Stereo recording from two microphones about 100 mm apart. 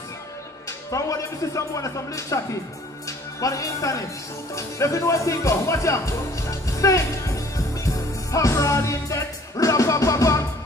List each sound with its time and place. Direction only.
0.7 s speech: 35° left (ahead or behind)